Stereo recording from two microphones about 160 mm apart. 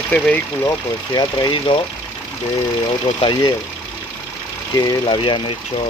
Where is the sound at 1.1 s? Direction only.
25° left (ahead or behind).